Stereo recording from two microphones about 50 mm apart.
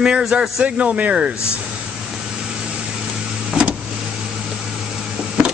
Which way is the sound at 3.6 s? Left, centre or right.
Centre.